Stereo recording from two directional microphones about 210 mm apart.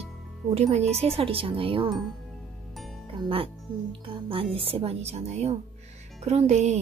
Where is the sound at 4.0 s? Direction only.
25° right (ahead or behind).